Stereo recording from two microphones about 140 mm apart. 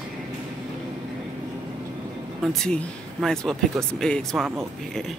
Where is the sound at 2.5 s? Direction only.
5° left (ahead or behind).